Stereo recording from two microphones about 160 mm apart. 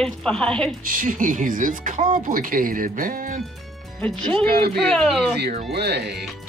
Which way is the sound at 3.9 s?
5° left (ahead or behind).